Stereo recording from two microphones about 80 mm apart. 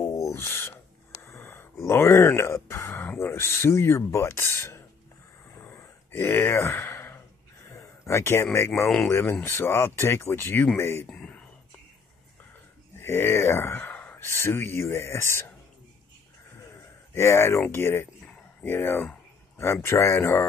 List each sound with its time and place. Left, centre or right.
0.3 s owl: left
1.2 s a sound: left
1.9 s speech: left
5.6 s a sound: left
8.5 s speech: left
11.1 s whispering: centre
12.9 s speech: left
17.1 s speech: left